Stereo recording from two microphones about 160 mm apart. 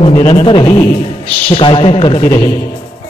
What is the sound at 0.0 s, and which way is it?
A man's voice, 35° left (ahead or behind).